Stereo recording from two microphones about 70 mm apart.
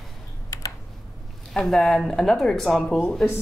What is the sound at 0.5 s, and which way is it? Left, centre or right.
Computer keyboard, left.